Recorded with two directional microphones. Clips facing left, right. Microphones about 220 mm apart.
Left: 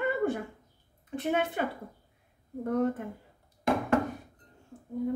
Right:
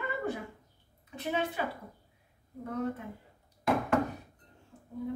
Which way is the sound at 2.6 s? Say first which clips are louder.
Left 6 dB; 50° left (ahead or behind).